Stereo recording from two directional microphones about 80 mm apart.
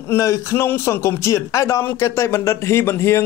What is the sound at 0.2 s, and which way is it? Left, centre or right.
Speech, left.